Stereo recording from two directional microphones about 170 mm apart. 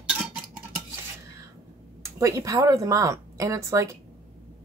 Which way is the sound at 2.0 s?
20° right (ahead or behind).